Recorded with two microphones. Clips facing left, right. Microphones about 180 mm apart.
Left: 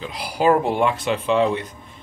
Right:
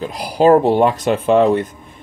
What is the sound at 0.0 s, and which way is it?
Speech, 45° right (ahead or behind).